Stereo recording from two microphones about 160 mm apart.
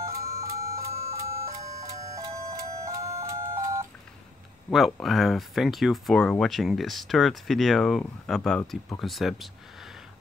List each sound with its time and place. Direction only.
0.0 s music: 20° right (ahead or behind)
0.9 s ice cream truck: 40° right (ahead or behind)
1.7 s music: 20° right (ahead or behind)
4.6 s speech: centre (ahead or behind)